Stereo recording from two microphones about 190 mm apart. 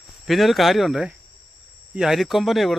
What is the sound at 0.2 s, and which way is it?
Speech, centre (ahead or behind).